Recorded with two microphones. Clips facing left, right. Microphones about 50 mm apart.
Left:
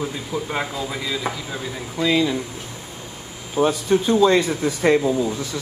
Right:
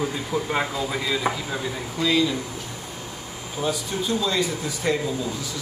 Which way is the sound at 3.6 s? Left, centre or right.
Left.